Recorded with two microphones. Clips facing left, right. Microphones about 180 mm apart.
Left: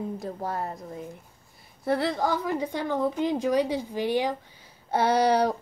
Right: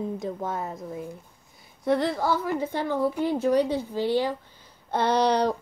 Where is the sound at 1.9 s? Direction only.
10° left (ahead or behind).